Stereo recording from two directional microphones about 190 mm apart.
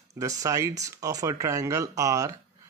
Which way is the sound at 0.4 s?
15° right (ahead or behind).